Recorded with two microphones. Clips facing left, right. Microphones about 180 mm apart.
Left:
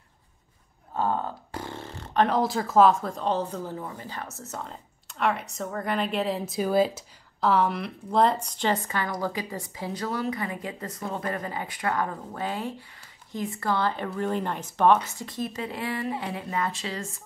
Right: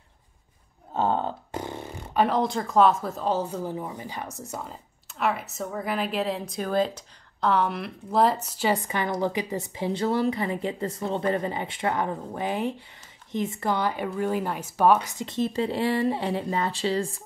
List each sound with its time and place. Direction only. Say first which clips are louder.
0.9 s a sound: right 2 dB; 25° right (ahead or behind)
2.2 s a woman's voice: even; centre (ahead or behind)
8.8 s a woman's voice: right 3 dB; 20° right (ahead or behind)
15.1 s a woman's voice: right 6 dB; 25° right (ahead or behind)